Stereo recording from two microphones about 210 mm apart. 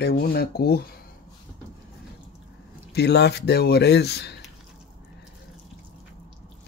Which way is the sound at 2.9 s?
55° left (ahead or behind).